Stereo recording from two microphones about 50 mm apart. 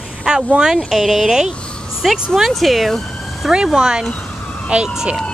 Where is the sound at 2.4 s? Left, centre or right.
Centre.